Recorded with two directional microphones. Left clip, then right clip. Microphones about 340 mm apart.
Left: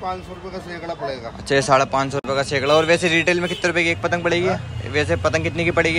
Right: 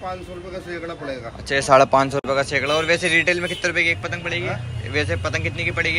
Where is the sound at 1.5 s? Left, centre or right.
Centre.